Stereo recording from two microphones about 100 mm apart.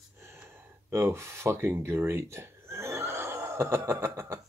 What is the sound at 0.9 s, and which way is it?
Speech, 30° right (ahead or behind).